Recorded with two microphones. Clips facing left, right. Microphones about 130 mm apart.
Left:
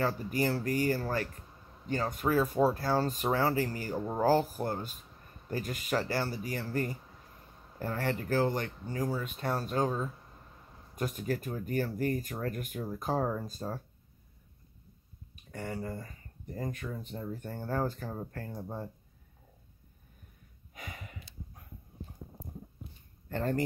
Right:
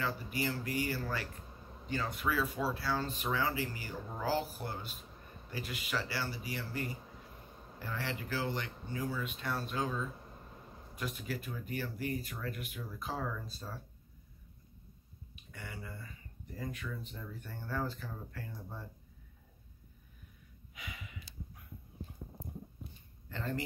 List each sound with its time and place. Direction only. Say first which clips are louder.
0.0 s speech: left 6 dB; 45° left (ahead or behind)
15.3 s speech: left 10 dB; 45° left (ahead or behind)
20.7 s a sound: left 3 dB; 45° left (ahead or behind)
23.2 s speech: left 7 dB; 50° left (ahead or behind)